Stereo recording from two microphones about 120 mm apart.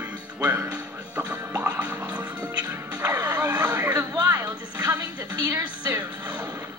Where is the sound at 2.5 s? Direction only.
30° right (ahead or behind).